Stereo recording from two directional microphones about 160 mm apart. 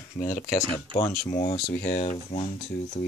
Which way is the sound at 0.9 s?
30° right (ahead or behind).